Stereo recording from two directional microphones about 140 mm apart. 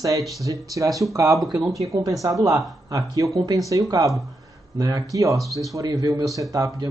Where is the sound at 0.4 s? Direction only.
25° right (ahead or behind).